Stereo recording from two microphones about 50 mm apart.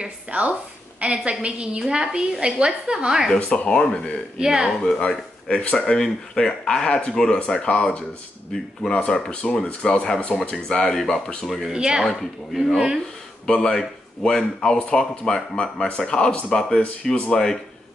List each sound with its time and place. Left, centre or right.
0.0 s a woman's voice: right
3.3 s speech: left
4.4 s a woman's voice: centre
4.8 s speech: left; by 11.7 s centre
11.7 s a woman's voice: centre
12.5 s speech: centre
13.5 s speech: centre